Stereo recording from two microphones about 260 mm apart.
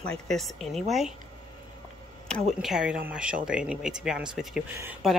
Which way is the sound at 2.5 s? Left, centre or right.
Centre.